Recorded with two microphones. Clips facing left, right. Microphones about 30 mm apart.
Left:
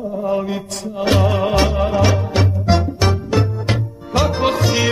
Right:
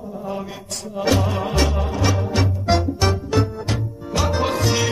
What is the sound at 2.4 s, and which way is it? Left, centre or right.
Music, left.